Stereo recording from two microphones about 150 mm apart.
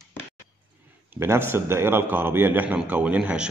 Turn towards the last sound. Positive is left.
turn(degrees=-10)  # may be behind; listen again after turning